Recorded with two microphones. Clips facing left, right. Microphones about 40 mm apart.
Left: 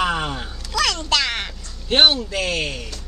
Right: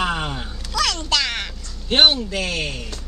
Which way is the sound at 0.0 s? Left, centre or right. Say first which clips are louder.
Left 1 dB; centre.